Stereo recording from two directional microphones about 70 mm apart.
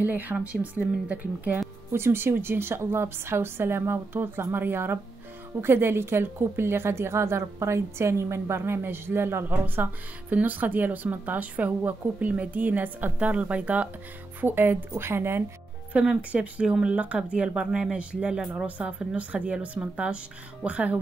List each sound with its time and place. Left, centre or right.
0.0 s a woman's voice: right
1.9 s a woman's voice: right
10.3 s a woman's voice: right
15.9 s a woman's voice: centre